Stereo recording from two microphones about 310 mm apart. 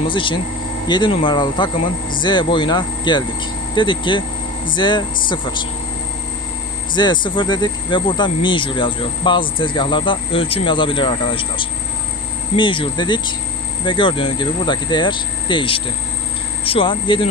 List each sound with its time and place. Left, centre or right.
0.1 s speech: centre
7.0 s speech: centre